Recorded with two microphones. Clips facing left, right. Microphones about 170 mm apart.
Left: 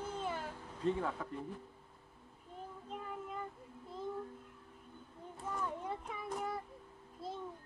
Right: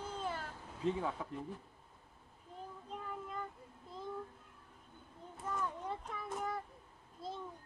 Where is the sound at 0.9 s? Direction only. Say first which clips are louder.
Left 1 dB; 10° right (ahead or behind).